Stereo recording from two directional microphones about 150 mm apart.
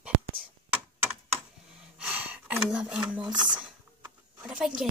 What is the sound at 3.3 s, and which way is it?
Speech, 30° right (ahead or behind).